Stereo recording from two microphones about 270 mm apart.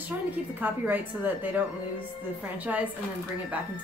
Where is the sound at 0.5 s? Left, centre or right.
Centre.